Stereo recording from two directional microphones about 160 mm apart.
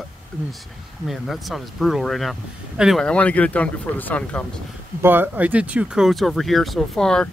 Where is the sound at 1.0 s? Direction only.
Centre (ahead or behind).